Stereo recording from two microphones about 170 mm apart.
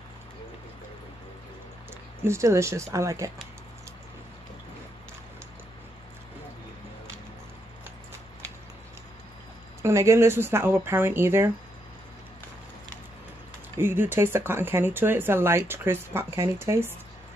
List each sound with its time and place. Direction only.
2.2 s speech: 15° right (ahead or behind)
9.8 s speech: 15° right (ahead or behind)
13.7 s speech: 15° right (ahead or behind)